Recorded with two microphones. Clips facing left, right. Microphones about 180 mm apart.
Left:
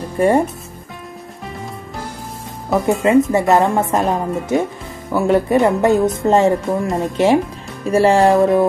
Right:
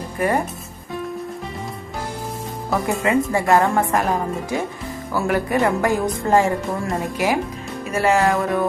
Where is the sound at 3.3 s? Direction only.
20° left (ahead or behind).